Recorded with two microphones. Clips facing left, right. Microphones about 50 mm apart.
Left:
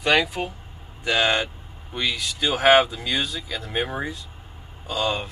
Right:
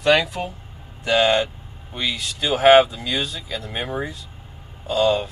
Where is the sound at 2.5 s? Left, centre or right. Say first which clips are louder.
Right 4 dB; centre.